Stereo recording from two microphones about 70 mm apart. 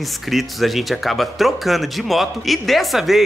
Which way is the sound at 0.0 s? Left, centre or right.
Centre.